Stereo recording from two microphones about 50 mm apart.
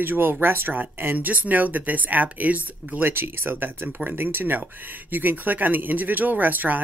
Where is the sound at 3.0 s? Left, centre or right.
Right.